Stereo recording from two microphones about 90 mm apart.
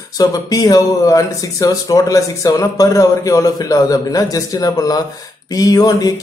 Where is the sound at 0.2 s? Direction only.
40° left (ahead or behind).